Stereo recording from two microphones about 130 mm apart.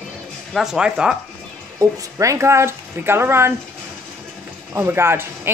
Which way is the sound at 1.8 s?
25° right (ahead or behind).